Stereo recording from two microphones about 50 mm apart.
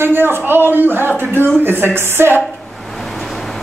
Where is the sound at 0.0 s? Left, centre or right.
Right.